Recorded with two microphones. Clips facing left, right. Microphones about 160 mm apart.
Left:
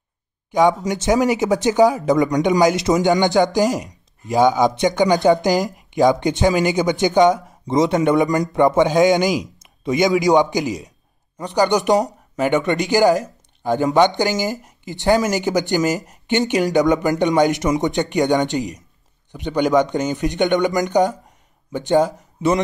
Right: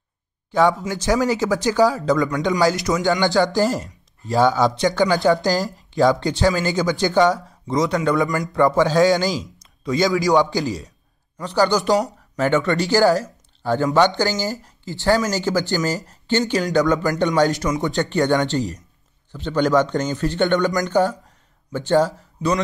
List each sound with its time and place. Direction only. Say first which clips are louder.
0.5 s a man's voice: left 2 dB; 20° left (ahead or behind)